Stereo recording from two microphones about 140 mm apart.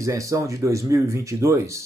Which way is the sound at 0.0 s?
20° right (ahead or behind).